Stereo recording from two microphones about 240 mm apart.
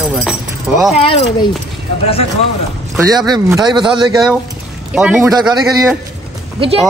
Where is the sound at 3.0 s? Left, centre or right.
Centre.